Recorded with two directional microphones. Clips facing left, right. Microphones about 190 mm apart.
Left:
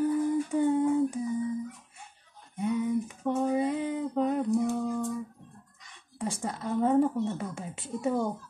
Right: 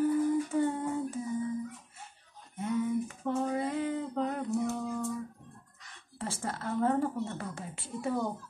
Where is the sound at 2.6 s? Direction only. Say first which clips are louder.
Left 2 dB; 15° left (ahead or behind).